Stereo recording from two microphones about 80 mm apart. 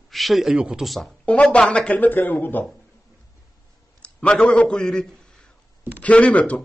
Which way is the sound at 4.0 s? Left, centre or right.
Centre.